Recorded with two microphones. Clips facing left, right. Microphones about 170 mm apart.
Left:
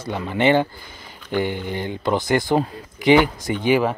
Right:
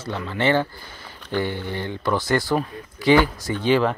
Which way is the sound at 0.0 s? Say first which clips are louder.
Left 3 dB; 15° left (ahead or behind).